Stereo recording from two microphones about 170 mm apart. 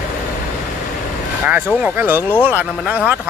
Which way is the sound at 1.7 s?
10° right (ahead or behind).